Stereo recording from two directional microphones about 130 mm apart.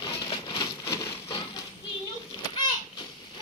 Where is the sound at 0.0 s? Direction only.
40° left (ahead or behind).